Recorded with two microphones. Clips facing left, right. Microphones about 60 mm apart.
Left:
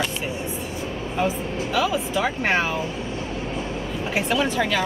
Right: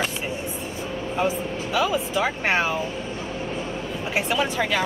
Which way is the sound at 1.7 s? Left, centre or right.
Centre.